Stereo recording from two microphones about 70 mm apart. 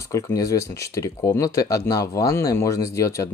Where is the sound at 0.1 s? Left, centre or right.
Left.